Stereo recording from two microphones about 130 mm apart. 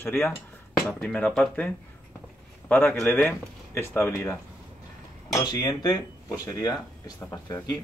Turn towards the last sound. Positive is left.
turn(degrees=30)  # may be behind; listen again after turning